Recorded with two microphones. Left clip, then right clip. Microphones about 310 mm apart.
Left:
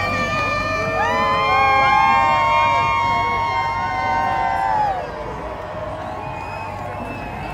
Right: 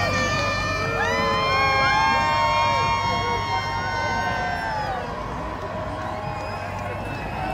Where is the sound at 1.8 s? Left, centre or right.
Left.